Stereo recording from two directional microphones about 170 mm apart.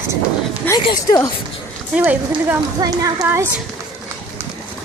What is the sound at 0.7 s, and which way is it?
Speech, 20° left (ahead or behind).